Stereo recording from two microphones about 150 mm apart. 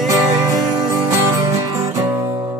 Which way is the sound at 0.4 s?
25° right (ahead or behind).